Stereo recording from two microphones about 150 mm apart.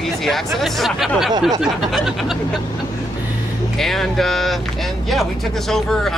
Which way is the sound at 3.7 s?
Centre (ahead or behind).